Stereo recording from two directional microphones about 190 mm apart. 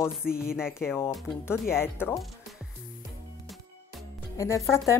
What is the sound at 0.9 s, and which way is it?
Speech, 15° left (ahead or behind).